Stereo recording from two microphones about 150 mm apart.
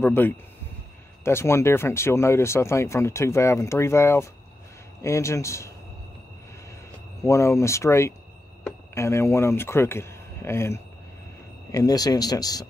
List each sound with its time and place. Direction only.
0.0 s speech: 15° left (ahead or behind)
7.2 s speech: 20° left (ahead or behind)